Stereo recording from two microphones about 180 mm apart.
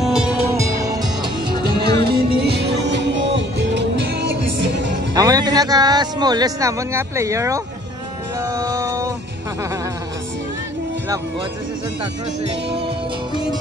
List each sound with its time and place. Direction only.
0.0 s music: 5° right (ahead or behind)
2.0 s music: 65° right (ahead or behind)
5.1 s speech: 20° right (ahead or behind)
8.4 s music: 20° right (ahead or behind)